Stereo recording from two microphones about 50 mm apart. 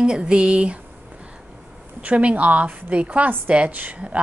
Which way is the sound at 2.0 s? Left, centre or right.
Right.